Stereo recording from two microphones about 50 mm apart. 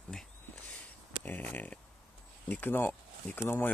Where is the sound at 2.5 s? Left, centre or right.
Left.